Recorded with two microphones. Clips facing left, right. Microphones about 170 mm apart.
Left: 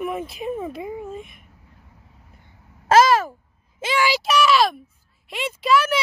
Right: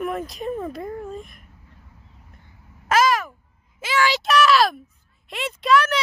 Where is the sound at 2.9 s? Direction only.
30° left (ahead or behind).